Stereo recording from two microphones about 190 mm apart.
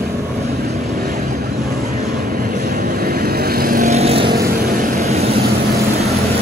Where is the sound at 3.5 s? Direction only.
50° right (ahead or behind); by 4.3 s 30° right (ahead or behind).